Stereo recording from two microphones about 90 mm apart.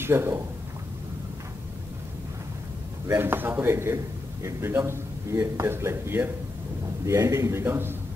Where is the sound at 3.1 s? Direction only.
25° right (ahead or behind).